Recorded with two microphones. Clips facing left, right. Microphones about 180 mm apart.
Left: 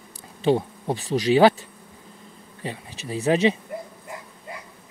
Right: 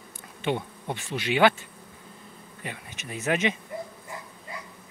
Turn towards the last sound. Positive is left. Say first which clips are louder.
# left 6 dB
turn(degrees=35)  # may be behind; listen again after turning